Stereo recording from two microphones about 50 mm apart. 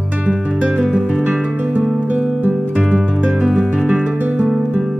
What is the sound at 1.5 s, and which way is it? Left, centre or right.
Music, right.